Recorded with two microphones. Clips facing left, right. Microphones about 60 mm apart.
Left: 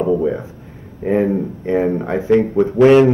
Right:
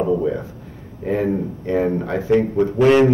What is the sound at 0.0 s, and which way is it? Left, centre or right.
Speech, centre.